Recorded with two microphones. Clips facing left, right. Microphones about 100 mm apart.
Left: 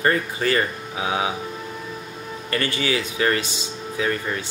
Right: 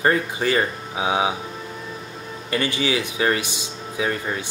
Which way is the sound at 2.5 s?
15° right (ahead or behind).